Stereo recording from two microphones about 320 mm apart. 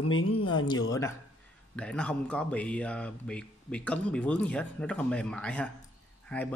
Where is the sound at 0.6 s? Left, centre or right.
Centre.